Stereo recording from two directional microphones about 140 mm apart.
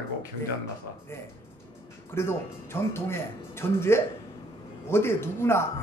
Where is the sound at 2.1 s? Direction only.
20° left (ahead or behind).